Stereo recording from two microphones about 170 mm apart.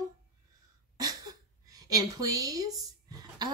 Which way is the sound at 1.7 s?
20° right (ahead or behind).